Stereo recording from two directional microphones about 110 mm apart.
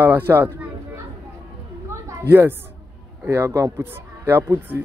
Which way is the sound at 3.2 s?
25° right (ahead or behind).